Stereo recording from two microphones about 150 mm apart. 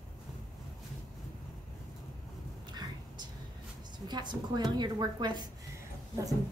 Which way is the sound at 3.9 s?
30° right (ahead or behind).